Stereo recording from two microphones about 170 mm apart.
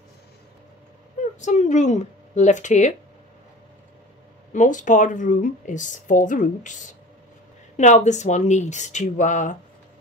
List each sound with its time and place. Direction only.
1.3 s speech: 45° left (ahead or behind)
4.5 s speech: 50° left (ahead or behind)